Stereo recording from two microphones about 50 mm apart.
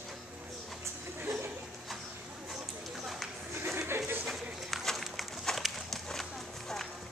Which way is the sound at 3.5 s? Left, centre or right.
Right.